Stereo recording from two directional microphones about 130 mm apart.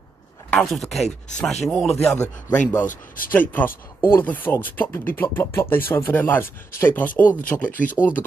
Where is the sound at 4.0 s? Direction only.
15° left (ahead or behind).